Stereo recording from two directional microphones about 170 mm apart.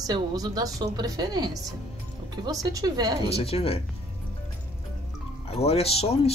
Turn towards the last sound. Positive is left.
turn(degrees=35)  # may be behind; listen again after turning